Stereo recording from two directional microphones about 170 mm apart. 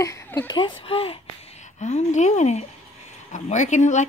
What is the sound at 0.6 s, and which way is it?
Speech, 30° left (ahead or behind).